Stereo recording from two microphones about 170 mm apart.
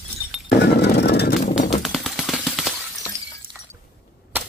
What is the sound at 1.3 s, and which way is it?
Horse, 45° left (ahead or behind).